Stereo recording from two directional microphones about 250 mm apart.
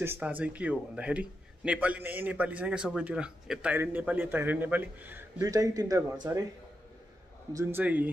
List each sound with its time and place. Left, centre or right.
0.0 s a man's voice: centre
7.5 s a man's voice: centre